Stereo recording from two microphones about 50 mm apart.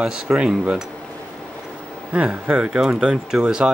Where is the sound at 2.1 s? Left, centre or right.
Right.